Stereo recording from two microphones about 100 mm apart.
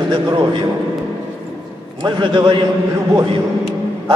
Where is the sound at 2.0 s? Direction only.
50° right (ahead or behind).